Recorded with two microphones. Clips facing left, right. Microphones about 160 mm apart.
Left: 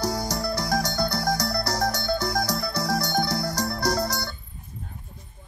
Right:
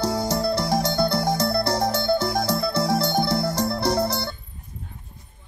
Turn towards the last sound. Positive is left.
turn(degrees=-25)  # may be behind; listen again after turning